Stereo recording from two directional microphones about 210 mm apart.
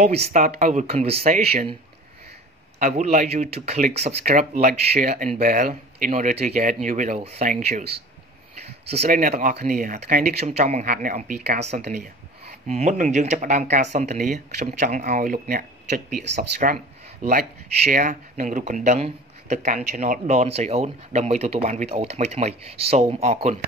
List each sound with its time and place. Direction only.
0.0 s speech: 35° right (ahead or behind)
2.8 s speech: 35° right (ahead or behind)
9.0 s speech: 40° right (ahead or behind)
16.6 s speech: 40° right (ahead or behind)